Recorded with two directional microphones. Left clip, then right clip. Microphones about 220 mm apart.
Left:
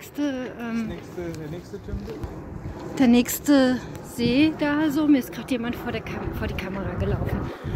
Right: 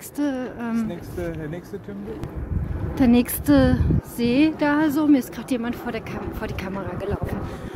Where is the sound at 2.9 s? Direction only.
5° left (ahead or behind).